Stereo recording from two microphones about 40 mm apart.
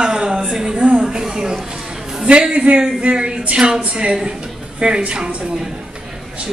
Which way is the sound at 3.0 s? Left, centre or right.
Right.